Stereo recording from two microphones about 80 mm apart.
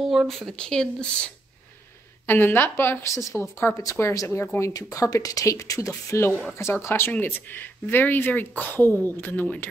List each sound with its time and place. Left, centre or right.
0.0 s speech: centre
2.2 s a woman's voice: left